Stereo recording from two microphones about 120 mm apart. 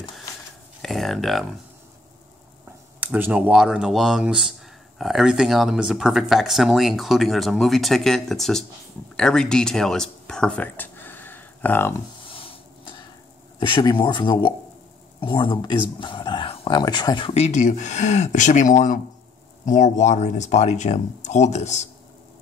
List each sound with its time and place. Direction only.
0.8 s speech: centre (ahead or behind)
3.0 s speech: 10° right (ahead or behind); by 11.9 s 15° left (ahead or behind)
12.3 s a sound: 50° left (ahead or behind)
13.6 s speech: 40° left (ahead or behind)
17.3 s speech: 65° left (ahead or behind)